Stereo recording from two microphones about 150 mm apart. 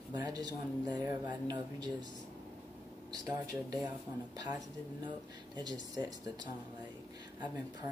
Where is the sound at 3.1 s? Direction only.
25° right (ahead or behind).